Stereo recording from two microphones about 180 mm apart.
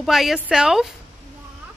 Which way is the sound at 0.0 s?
Centre (ahead or behind).